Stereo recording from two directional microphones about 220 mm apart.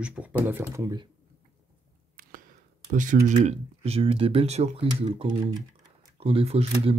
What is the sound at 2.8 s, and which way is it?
Speech, 35° right (ahead or behind).